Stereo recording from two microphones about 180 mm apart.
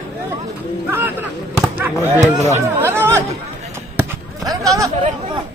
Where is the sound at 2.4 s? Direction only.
40° right (ahead or behind).